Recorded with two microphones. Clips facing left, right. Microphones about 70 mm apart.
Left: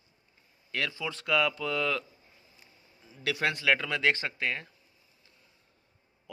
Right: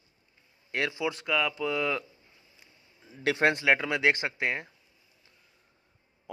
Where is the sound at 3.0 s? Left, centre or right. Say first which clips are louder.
Right 5 dB; right.